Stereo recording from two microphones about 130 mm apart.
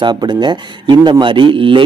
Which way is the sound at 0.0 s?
35° right (ahead or behind).